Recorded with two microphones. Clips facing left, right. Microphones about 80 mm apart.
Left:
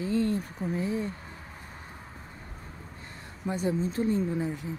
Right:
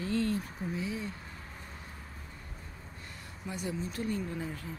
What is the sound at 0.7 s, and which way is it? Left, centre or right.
Speech, left.